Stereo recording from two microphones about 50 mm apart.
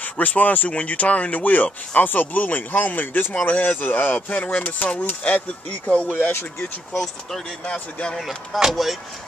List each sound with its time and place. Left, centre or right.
0.0 s speech: left
6.9 s speech: centre
7.6 s speech: left
8.5 s speech: centre